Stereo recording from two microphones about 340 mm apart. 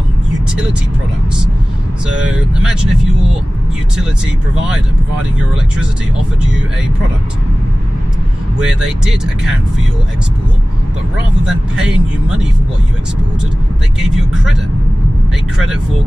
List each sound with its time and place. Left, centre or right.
2.2 s speech: centre
8.5 s speech: centre